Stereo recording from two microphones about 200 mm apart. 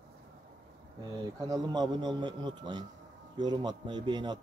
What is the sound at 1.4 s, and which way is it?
Speech, 20° right (ahead or behind).